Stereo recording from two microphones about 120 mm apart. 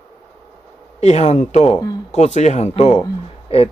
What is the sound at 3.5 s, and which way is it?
Speech, 55° left (ahead or behind).